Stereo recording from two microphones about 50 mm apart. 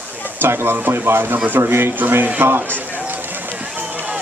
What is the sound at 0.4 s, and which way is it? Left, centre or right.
Speech, right.